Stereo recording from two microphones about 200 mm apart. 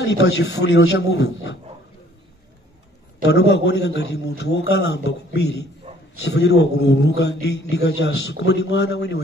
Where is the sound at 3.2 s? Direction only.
60° left (ahead or behind).